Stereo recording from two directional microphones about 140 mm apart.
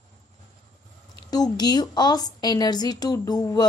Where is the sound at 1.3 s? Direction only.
30° left (ahead or behind).